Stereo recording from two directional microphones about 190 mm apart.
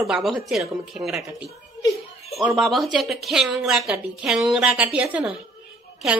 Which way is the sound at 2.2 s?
Centre (ahead or behind).